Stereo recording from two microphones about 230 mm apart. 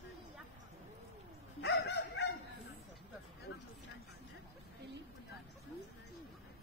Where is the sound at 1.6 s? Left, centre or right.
Left.